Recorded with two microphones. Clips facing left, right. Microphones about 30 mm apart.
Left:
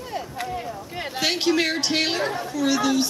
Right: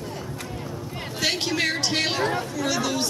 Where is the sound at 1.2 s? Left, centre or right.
Centre.